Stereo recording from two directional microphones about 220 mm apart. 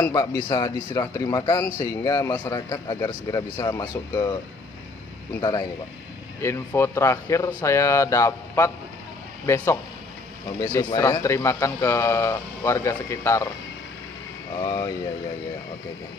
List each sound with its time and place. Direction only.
0.0 s speech: 15° left (ahead or behind)
5.4 s speech: 15° left (ahead or behind)
10.6 s speech: 20° left (ahead or behind)
14.6 s speech: 20° left (ahead or behind)